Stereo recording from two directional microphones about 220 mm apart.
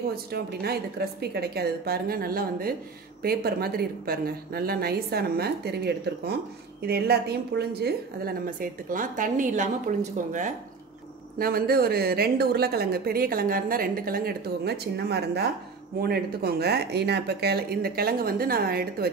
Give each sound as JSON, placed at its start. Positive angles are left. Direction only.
{"t": 0.1, "sound": "a woman's voice", "side_deg": -45}